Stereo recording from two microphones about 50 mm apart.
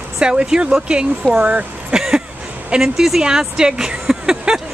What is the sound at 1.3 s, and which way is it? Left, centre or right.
Speech, right.